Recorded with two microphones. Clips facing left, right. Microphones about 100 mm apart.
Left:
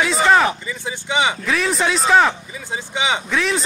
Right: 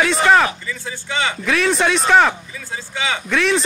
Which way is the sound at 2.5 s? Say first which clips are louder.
Left 2 dB; 20° left (ahead or behind).